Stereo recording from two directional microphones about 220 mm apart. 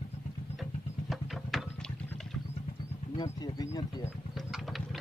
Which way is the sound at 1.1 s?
Centre (ahead or behind).